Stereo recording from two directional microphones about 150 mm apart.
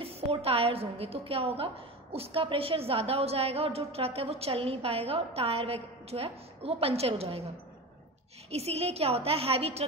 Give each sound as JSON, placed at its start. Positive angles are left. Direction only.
{"t": 0.0, "sound": "a woman's voice", "side_deg": -40}
{"t": 8.5, "sound": "a woman's voice", "side_deg": -45}